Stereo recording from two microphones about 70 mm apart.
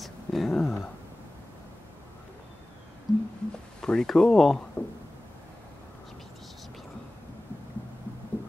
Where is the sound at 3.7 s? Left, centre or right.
Centre.